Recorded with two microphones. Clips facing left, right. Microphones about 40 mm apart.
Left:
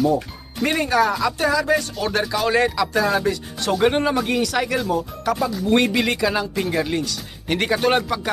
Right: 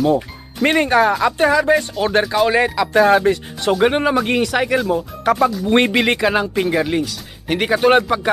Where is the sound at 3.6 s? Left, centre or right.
Centre.